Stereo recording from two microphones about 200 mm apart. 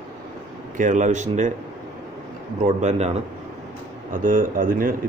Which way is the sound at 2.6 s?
35° right (ahead or behind).